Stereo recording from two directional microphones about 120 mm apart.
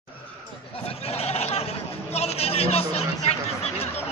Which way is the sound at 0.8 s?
60° left (ahead or behind).